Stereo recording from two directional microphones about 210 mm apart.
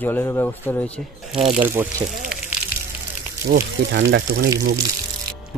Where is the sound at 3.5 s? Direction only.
45° right (ahead or behind).